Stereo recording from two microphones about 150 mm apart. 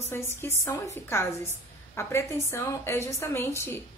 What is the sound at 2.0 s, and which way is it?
A woman's voice, 15° left (ahead or behind).